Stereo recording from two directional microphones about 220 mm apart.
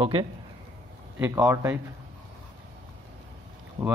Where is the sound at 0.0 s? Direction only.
25° right (ahead or behind).